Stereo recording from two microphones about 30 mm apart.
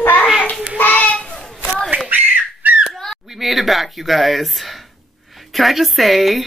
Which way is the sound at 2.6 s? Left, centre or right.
Right.